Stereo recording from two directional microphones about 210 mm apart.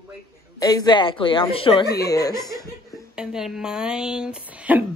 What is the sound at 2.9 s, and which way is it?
Speech, 5° right (ahead or behind).